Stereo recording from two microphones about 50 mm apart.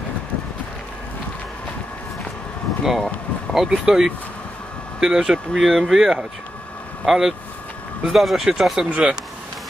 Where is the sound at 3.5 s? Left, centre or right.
Centre.